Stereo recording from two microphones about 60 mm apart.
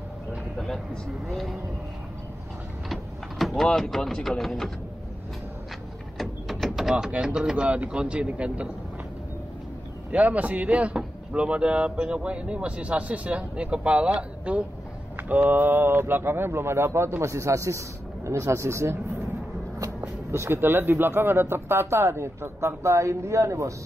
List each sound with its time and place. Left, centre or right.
1.2 s speech: centre
2.9 s a sound: centre
3.6 s speech: centre
6.6 s mechanisms: centre
7.1 s speech: centre
10.1 s speech: right
20.2 s speech: right